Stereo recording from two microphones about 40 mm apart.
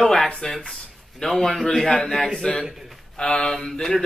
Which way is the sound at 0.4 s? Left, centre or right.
Centre.